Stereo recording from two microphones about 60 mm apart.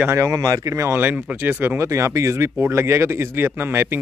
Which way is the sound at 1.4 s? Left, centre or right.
Right.